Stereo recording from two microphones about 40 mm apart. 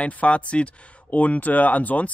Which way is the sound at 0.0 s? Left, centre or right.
Left.